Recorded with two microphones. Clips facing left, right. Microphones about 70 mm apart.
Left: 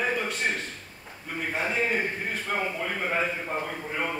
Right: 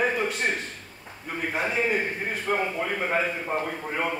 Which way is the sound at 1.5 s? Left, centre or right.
Centre.